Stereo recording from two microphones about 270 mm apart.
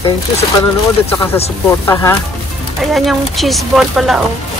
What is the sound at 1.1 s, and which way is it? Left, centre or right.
Speech, centre.